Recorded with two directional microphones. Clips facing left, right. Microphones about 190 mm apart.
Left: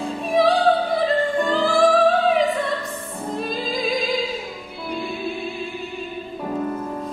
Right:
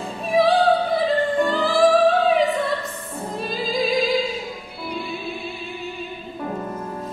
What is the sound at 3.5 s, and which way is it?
Music, centre (ahead or behind).